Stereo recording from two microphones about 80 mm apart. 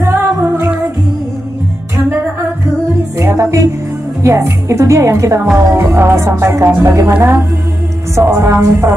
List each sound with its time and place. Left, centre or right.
0.0 s music: right
3.2 s music: right
4.2 s a woman's voice: right
7.2 s music: right
8.2 s a woman's voice: right